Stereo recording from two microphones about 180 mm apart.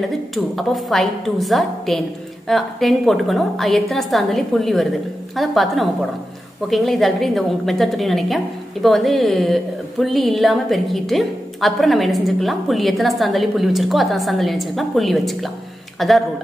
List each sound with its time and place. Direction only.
0.3 s a woman's voice: centre (ahead or behind)